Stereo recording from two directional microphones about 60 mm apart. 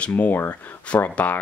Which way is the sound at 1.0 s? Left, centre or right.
Left.